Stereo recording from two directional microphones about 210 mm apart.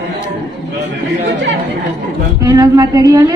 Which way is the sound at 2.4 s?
15° right (ahead or behind).